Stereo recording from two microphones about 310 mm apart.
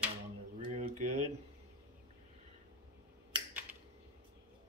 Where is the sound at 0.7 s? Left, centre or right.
Right.